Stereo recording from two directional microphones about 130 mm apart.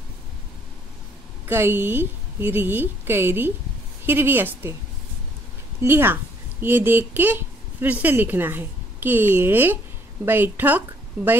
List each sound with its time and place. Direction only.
1.5 s a woman's voice: 15° right (ahead or behind)
5.8 s a woman's voice: 15° right (ahead or behind)